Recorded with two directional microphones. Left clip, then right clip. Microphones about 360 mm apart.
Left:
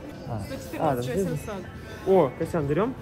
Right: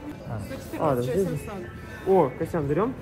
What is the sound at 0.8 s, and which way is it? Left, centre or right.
Speech, centre.